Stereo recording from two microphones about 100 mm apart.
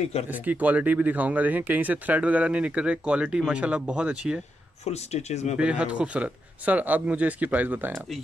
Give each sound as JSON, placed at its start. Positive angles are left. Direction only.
{"t": 0.3, "sound": "speech", "side_deg": -15}
{"t": 4.8, "sound": "speech", "side_deg": 90}
{"t": 5.6, "sound": "speech", "side_deg": -10}